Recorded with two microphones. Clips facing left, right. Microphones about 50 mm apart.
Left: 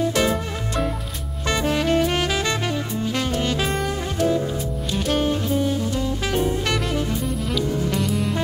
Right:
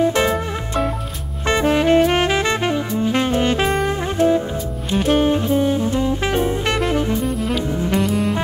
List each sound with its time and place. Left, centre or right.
0.0 s music: right
1.5 s saxophone: right
4.9 s music: right